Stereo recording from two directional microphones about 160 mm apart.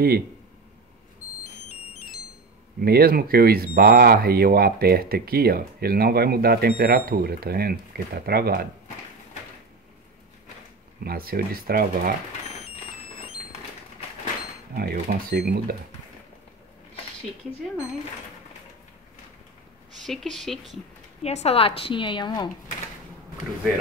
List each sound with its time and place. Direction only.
2.8 s speech: 70° right (ahead or behind)
11.1 s speech: 70° right (ahead or behind)
14.8 s speech: 65° right (ahead or behind)
20.1 s speech: centre (ahead or behind)
21.2 s a woman's voice: 40° left (ahead or behind)